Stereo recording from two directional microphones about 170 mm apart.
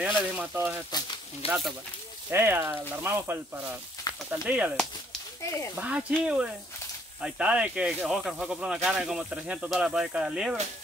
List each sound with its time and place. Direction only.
0.0 s speech: 10° right (ahead or behind)
0.9 s speech: 25° left (ahead or behind)
2.3 s speech: 15° right (ahead or behind)
5.8 s speech: 10° right (ahead or behind)